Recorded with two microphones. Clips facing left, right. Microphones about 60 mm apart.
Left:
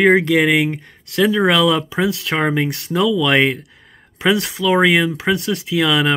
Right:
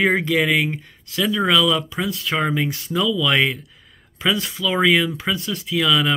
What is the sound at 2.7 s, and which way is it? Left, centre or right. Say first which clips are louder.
Speech: left 4 dB; left.